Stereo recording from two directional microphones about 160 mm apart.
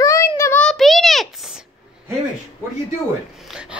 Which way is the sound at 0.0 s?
20° left (ahead or behind).